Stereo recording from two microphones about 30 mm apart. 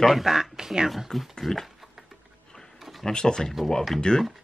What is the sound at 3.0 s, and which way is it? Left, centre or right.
Speech, left.